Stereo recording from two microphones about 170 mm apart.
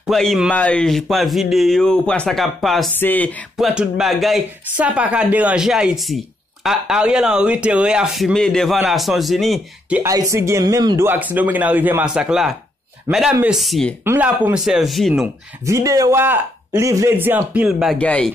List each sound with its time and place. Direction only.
0.0 s speech: centre (ahead or behind)
2.9 s speech: 10° left (ahead or behind)
3.5 s speech: 5° right (ahead or behind)
10.0 s speech: 20° right (ahead or behind)
11.1 s speech: 10° right (ahead or behind)
14.0 s speech: 10° right (ahead or behind)
15.6 s speech: 20° right (ahead or behind)
17.9 s speech: 5° left (ahead or behind)